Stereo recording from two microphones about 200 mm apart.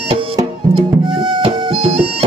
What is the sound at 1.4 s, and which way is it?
Music, 30° right (ahead or behind).